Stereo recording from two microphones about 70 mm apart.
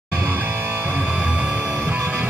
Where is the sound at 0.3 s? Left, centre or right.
Right.